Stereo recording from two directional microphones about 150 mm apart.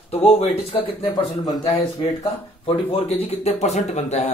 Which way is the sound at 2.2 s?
35° left (ahead or behind).